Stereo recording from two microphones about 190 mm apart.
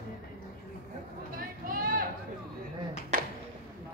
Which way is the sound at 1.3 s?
50° right (ahead or behind).